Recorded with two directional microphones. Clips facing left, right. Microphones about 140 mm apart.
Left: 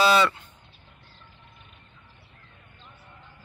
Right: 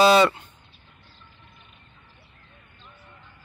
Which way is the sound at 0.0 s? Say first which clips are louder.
Right 4 dB; 20° right (ahead or behind).